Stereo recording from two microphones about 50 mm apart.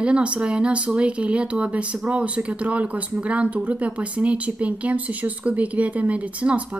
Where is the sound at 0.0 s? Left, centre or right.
Right.